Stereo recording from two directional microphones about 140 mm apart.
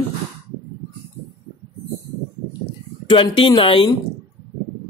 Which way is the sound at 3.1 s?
35° left (ahead or behind).